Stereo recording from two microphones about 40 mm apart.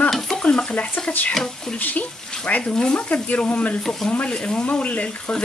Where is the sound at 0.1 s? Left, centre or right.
Centre.